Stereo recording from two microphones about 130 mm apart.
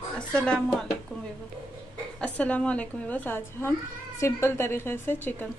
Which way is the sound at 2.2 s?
10° left (ahead or behind).